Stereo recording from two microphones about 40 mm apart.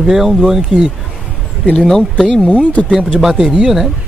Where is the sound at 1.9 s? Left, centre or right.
Centre.